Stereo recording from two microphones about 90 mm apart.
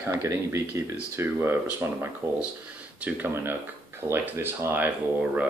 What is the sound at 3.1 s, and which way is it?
Speech, 20° right (ahead or behind).